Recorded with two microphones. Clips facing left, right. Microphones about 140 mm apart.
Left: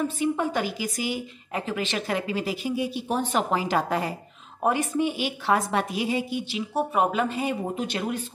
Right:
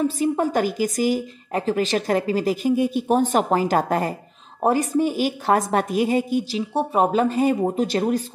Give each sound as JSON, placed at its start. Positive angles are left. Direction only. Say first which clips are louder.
{"t": 0.0, "sound": "a woman's voice", "louder": "right 4 dB", "side_deg": -40}
{"t": 6.7, "sound": "speech", "louder": "right 4 dB", "side_deg": -30}